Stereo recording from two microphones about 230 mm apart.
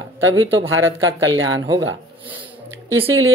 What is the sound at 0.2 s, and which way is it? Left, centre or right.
Speech, right.